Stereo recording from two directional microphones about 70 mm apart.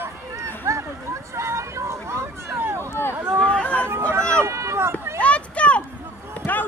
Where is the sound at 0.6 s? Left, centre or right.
Right.